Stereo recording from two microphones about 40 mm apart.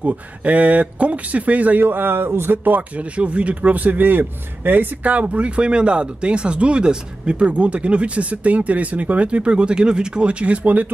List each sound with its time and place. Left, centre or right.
0.0 s speech: right
3.0 s a man's voice: right
5.1 s speech: right